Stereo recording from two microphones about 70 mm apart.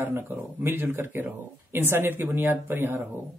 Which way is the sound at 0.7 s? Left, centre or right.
Right.